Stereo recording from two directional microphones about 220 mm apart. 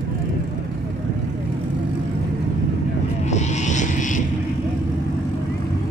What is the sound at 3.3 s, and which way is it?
Vehicle, 30° left (ahead or behind).